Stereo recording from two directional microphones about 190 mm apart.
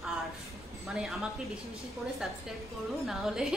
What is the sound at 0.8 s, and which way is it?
A woman's voice, centre (ahead or behind).